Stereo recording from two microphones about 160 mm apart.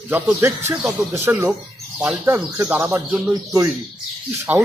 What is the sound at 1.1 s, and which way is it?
Speech, 15° right (ahead or behind).